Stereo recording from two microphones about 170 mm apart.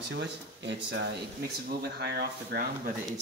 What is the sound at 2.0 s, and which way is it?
Speech, 65° right (ahead or behind).